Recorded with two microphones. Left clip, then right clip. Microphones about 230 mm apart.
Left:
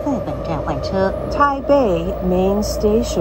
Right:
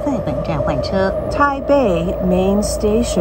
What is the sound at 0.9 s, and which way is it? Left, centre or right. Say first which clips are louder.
Vehicle: left 1 dB; right.